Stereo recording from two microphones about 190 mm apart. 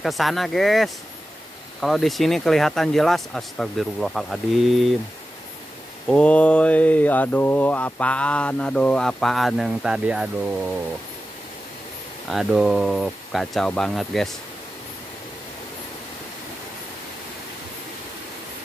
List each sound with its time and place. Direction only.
0.0 s speech: centre (ahead or behind)
6.0 s speech: 5° left (ahead or behind)
12.3 s speech: centre (ahead or behind)